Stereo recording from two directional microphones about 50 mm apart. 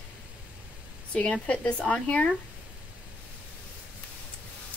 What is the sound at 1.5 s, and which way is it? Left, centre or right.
Speech, left.